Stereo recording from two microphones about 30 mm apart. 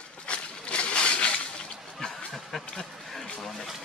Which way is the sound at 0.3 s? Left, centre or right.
Left.